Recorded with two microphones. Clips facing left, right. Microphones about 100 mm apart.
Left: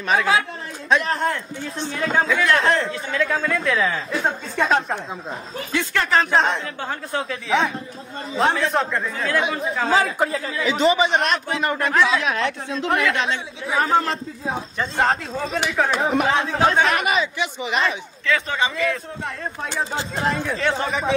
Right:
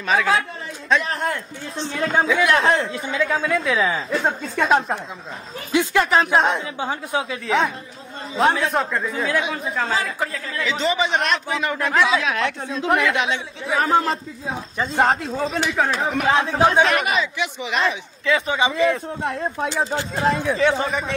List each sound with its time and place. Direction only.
0.1 s a man's voice: centre (ahead or behind)
3.1 s a man's voice: centre (ahead or behind)
10.1 s speech: 30° left (ahead or behind)
10.7 s a man's voice: 10° left (ahead or behind)
18.2 s speech: 15° right (ahead or behind)
18.8 s a man's voice: 25° right (ahead or behind)
20.2 s a man's voice: centre (ahead or behind)